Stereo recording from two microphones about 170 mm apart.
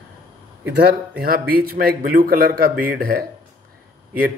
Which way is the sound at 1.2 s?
60° right (ahead or behind).